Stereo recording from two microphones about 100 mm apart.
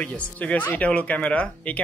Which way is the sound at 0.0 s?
15° left (ahead or behind).